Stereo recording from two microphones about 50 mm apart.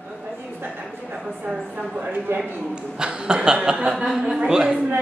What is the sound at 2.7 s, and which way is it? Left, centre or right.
A man's voice, centre.